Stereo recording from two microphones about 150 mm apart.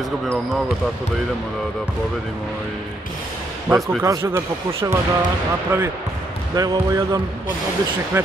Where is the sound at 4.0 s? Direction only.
20° right (ahead or behind).